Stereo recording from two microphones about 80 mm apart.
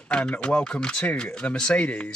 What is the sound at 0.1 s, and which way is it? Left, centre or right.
Speech, centre.